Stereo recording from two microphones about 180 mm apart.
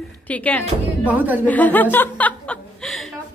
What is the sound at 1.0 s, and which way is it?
Speech, 10° right (ahead or behind).